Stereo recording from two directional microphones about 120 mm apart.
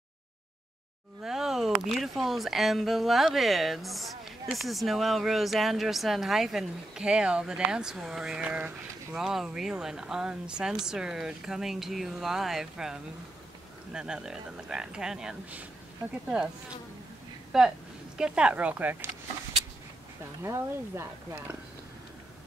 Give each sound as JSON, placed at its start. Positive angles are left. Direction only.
{"t": 1.2, "sound": "speech", "side_deg": -5}
{"t": 16.3, "sound": "insect", "side_deg": -10}
{"t": 17.5, "sound": "speech", "side_deg": -5}
{"t": 20.4, "sound": "speech", "side_deg": -20}